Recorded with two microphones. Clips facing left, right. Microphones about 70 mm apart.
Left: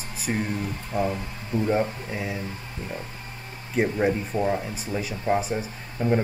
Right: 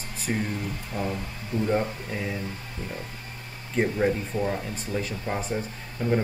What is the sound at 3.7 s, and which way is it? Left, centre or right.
Speech, centre.